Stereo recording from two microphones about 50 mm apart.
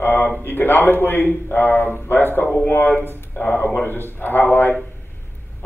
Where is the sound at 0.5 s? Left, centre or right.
Left.